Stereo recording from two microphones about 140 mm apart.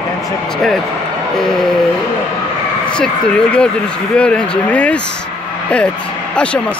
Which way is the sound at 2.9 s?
5° left (ahead or behind).